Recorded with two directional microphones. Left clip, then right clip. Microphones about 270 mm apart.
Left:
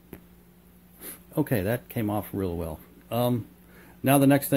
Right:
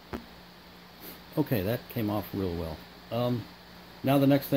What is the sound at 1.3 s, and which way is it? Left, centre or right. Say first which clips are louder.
Speech: left 3 dB; centre.